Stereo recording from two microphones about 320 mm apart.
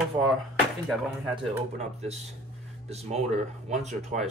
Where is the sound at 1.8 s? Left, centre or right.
Centre.